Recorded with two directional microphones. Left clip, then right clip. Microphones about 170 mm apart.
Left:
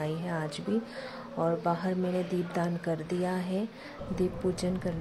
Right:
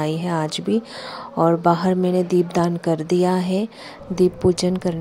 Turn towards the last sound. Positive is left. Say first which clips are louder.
# right 12 dB
turn(degrees=-45)  # may be behind; listen again after turning